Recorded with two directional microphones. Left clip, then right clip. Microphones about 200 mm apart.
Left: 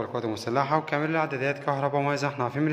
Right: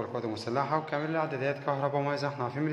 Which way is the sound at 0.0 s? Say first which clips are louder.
Left 4 dB; 15° left (ahead or behind).